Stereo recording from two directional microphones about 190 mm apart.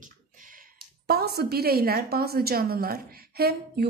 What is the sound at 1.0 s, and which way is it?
A woman's voice, 55° right (ahead or behind).